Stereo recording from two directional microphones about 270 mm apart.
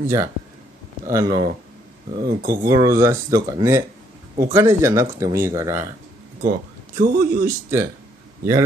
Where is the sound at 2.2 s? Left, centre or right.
Right.